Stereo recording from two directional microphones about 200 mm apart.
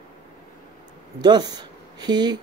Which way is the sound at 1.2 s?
20° right (ahead or behind).